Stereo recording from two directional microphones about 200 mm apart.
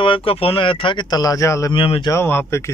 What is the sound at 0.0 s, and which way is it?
Speech, 25° left (ahead or behind).